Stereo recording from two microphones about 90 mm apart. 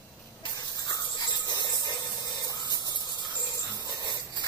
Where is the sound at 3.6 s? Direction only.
45° left (ahead or behind).